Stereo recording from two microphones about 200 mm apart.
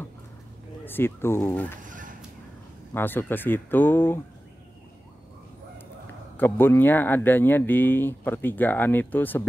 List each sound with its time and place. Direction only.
0.8 s speech: 10° left (ahead or behind)
1.8 s fowl: 40° right (ahead or behind)
2.9 s speech: 10° left (ahead or behind)
6.3 s speech: 10° left (ahead or behind)